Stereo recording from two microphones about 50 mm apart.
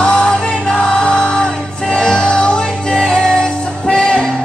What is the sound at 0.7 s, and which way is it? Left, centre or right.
Music, centre.